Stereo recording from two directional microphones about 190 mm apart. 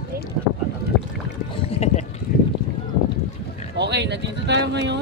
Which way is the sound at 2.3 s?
50° left (ahead or behind).